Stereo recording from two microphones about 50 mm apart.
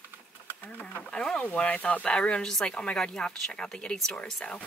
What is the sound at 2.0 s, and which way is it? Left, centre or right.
Speech, centre.